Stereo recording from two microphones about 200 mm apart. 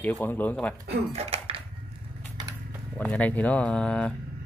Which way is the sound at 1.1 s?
30° right (ahead or behind).